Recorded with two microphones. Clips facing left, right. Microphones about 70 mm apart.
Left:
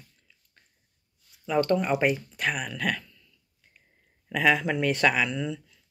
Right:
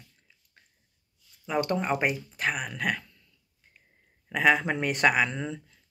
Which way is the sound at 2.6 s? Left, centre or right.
Right.